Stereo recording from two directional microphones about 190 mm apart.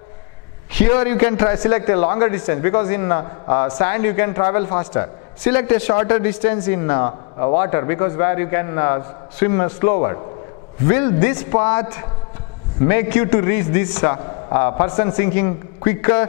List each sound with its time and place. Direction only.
0.7 s a man's voice: 10° left (ahead or behind)
7.1 s a man's voice: 30° left (ahead or behind)
7.5 s a man's voice: 20° left (ahead or behind)
11.8 s a man's voice: 25° left (ahead or behind)